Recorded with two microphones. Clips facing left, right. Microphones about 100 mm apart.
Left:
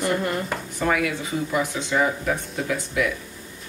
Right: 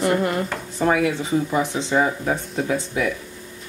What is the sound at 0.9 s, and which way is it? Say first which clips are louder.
Speech: right 4 dB; 25° right (ahead or behind).